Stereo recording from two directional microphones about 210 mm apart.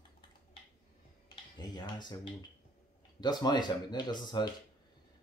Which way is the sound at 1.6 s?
20° left (ahead or behind).